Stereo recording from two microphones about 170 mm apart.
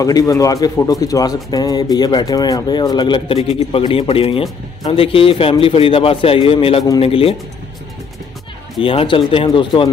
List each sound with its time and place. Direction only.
0.0 s a man's voice: 20° left (ahead or behind)
8.8 s a man's voice: 30° left (ahead or behind)